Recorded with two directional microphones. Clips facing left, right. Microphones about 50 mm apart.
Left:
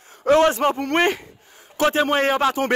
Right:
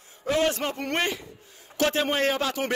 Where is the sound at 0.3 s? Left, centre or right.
Left.